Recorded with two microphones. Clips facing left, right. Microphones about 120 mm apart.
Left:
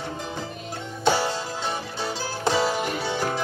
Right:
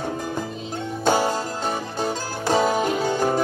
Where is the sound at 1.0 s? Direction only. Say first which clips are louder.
Right 2 dB; 45° right (ahead or behind).